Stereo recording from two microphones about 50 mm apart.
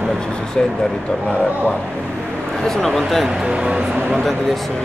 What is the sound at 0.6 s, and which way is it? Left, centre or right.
Speech, centre.